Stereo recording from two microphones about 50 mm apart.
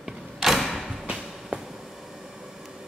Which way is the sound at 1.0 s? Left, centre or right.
Centre.